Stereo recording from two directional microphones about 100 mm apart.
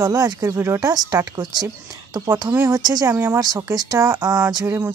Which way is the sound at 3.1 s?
25° right (ahead or behind).